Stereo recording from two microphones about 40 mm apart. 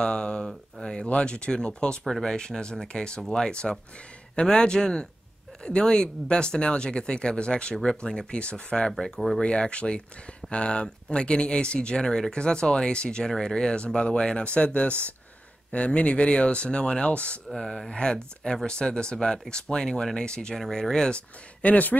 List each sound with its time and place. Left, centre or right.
0.0 s speech: left
1.0 s speech: left
12.0 s speech: centre
17.5 s speech: centre
21.5 s speech: left